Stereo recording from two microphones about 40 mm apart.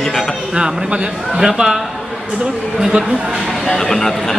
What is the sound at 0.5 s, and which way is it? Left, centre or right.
A man's voice, right.